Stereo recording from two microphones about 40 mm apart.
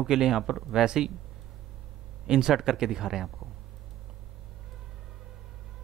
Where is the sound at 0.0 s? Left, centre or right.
Centre.